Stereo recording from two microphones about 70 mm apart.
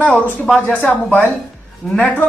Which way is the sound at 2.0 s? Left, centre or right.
Left.